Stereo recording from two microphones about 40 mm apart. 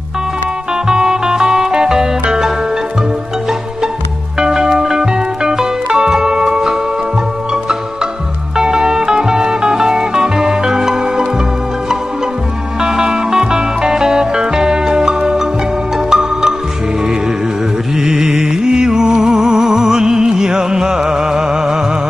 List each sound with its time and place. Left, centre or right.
0.8 s music: centre
4.4 s music: centre
8.5 s music: centre
12.8 s music: centre
17.9 s music: centre